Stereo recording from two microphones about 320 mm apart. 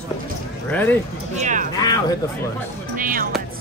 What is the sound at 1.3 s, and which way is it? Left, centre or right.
Speech, right.